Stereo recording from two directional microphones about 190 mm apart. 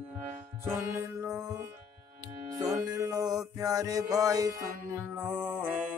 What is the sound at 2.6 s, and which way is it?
Music, 20° right (ahead or behind).